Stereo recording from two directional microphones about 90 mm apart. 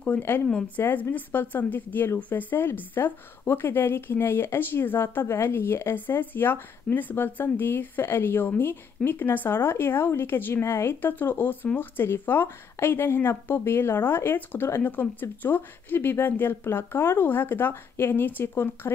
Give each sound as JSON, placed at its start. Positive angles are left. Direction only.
{"t": 0.7, "sound": "speech", "side_deg": 20}